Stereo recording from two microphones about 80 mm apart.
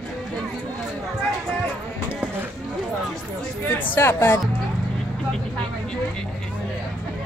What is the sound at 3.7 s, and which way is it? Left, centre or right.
Speech, left.